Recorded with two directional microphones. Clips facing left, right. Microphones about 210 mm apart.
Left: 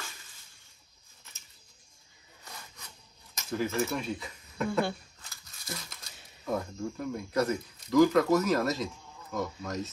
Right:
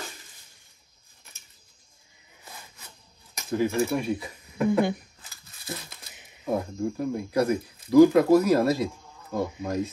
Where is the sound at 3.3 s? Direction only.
15° right (ahead or behind).